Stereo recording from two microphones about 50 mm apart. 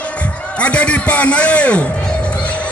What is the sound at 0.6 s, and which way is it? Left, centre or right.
A man's voice, left.